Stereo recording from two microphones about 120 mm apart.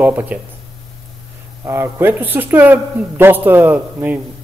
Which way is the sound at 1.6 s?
20° right (ahead or behind).